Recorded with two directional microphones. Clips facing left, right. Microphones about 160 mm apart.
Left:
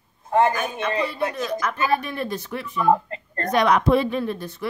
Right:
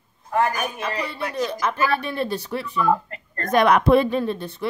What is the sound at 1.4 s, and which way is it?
A woman's voice, 25° right (ahead or behind).